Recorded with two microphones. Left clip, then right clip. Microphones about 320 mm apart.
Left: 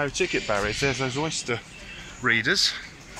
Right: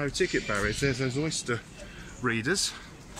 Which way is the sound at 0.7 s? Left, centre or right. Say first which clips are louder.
Left 4 dB; left.